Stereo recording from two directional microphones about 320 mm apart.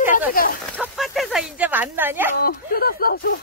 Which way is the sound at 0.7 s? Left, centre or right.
Centre.